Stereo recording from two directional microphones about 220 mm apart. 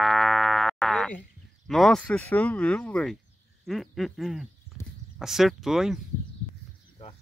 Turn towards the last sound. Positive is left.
turn(degrees=0)  # may be behind; listen again after turning